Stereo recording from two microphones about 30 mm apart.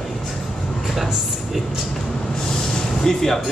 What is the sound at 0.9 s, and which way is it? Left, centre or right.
Speech, centre.